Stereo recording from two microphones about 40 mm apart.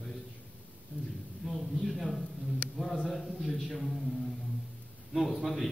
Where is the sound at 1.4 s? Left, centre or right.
Centre.